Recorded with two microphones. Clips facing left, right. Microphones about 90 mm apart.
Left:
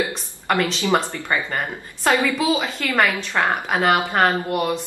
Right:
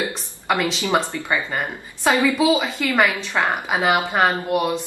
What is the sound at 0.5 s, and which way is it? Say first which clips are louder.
A woman's voice: left 1 dB; 10° right (ahead or behind).